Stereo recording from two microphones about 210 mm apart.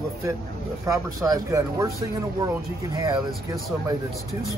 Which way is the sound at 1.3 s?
15° right (ahead or behind).